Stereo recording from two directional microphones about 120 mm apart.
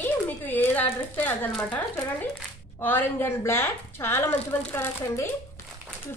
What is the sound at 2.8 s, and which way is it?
A woman's voice, 15° left (ahead or behind).